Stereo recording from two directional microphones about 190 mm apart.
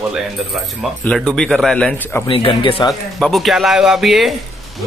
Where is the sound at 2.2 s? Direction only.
25° left (ahead or behind).